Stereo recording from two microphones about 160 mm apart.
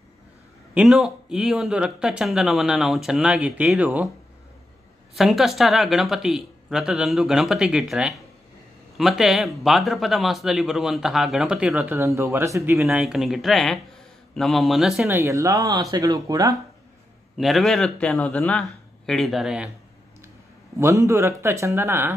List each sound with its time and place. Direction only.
0.7 s speech: 5° right (ahead or behind)
5.1 s speech: centre (ahead or behind); by 12.8 s 20° right (ahead or behind)
12.8 s speech: 5° right (ahead or behind)
15.0 s speech: 15° right (ahead or behind)
17.4 s speech: centre (ahead or behind)
20.7 s a man's voice: 20° right (ahead or behind)